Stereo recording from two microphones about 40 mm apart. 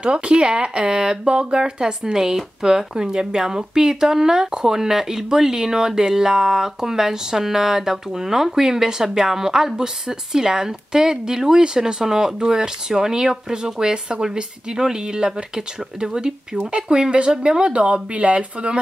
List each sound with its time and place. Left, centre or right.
0.0 s speech: right